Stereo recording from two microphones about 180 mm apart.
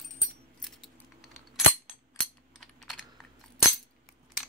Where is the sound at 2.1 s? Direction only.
Centre (ahead or behind).